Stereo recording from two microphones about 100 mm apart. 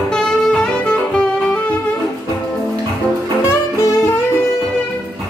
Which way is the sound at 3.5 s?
30° left (ahead or behind).